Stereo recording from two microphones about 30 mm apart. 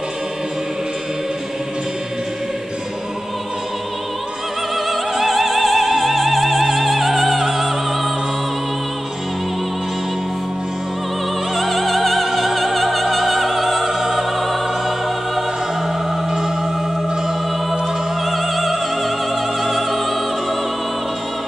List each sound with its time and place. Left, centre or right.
4.7 s opera: centre
11.5 s opera: centre
13.8 s music: centre
18.2 s opera: centre
19.6 s music: centre